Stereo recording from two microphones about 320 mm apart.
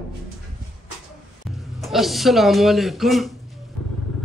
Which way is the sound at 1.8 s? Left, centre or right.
Centre.